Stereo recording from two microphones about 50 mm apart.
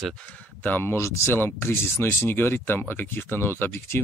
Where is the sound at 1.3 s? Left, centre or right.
Left.